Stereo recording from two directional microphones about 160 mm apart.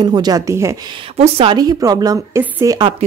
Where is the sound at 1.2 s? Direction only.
35° right (ahead or behind).